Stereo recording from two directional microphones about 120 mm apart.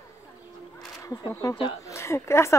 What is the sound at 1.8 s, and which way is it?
Speech, 25° left (ahead or behind).